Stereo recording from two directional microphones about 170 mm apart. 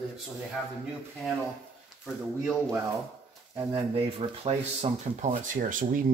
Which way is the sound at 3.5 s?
30° right (ahead or behind).